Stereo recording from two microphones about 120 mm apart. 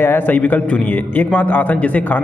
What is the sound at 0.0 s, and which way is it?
A man's voice, 15° left (ahead or behind).